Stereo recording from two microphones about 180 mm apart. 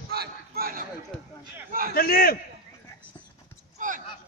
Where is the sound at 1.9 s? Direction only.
55° left (ahead or behind).